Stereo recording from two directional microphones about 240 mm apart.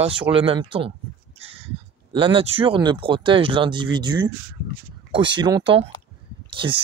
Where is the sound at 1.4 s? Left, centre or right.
Right.